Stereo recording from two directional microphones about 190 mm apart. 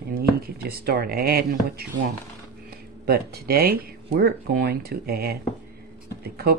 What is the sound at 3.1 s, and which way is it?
Speech, 55° right (ahead or behind).